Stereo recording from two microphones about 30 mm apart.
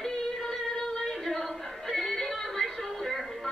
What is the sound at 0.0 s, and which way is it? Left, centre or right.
Music, centre.